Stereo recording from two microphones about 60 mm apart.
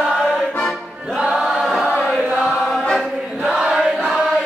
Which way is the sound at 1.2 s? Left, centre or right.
Centre.